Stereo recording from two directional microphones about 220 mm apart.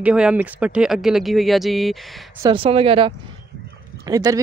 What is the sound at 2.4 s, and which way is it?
Speech, 25° right (ahead or behind).